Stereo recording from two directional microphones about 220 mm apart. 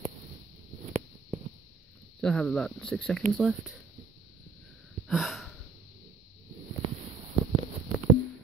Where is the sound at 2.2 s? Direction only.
5° left (ahead or behind).